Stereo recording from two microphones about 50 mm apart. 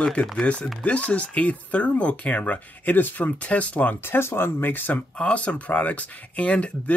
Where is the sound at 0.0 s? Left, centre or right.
Centre.